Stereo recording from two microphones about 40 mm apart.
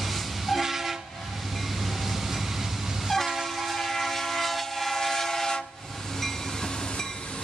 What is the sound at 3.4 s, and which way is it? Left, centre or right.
Train, centre.